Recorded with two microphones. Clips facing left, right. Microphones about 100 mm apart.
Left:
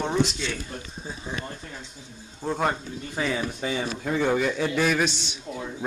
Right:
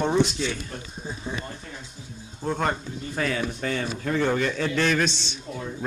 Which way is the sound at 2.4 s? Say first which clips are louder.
Even; 5° left (ahead or behind).